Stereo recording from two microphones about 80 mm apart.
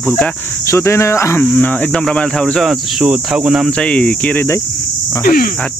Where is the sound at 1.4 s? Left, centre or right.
Centre.